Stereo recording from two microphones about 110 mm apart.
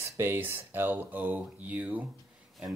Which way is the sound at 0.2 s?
20° right (ahead or behind).